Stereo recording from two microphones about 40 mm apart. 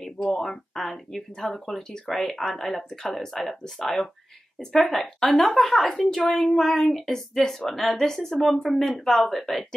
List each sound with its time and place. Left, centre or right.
0.4 s a woman's voice: centre
5.9 s a woman's voice: left
6.3 s a woman's voice: centre